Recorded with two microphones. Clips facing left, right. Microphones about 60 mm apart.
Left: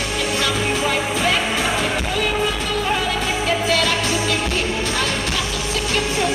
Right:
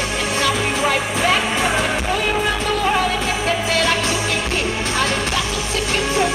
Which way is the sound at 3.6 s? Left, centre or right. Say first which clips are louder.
Right 1 dB; right.